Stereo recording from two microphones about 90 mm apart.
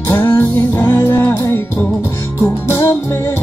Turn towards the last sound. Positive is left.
turn(degrees=30)  # may be behind; listen again after turning